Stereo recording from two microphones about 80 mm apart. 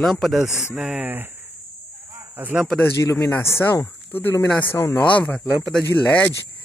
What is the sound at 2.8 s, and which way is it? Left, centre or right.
Speech, left.